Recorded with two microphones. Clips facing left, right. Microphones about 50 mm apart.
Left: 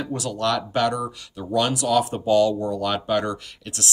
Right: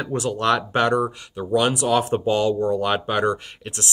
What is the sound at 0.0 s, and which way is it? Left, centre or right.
Speech, right.